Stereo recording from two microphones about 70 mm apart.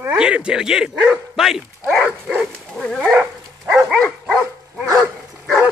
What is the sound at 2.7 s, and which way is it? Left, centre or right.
Dog, centre.